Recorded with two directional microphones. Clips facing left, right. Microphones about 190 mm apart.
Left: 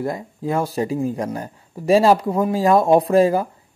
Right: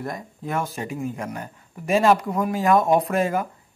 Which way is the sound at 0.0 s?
30° left (ahead or behind).